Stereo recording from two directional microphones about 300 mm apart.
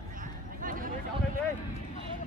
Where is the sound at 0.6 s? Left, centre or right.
Right.